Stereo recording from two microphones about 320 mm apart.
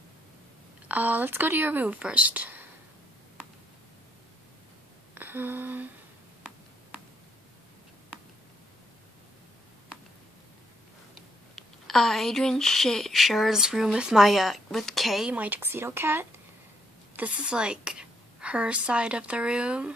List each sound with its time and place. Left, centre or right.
0.8 s speech: centre
5.1 s a sound: centre
11.5 s a woman's voice: centre